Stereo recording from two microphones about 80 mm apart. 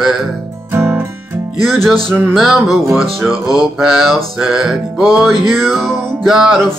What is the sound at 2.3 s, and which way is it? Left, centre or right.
Music, centre.